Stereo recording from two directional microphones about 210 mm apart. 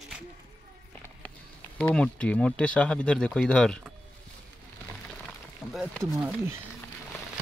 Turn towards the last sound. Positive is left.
turn(degrees=-10)  # may be behind; listen again after turning